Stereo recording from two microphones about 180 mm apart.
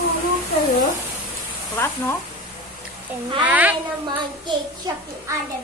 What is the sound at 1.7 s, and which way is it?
Speech, 15° left (ahead or behind).